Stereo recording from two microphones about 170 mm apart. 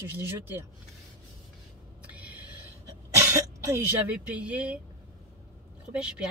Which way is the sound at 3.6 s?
10° right (ahead or behind).